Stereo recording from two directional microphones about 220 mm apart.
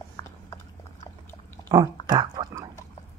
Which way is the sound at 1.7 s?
15° right (ahead or behind).